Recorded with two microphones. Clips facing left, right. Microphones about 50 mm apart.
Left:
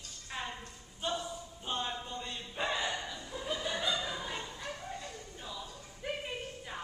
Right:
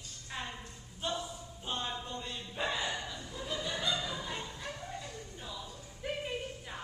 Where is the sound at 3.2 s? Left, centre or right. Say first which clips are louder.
Left 1 dB; centre.